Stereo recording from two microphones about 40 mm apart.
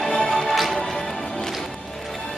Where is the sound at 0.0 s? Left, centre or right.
Centre.